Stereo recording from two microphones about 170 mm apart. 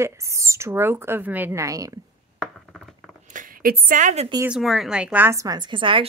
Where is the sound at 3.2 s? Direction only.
50° right (ahead or behind).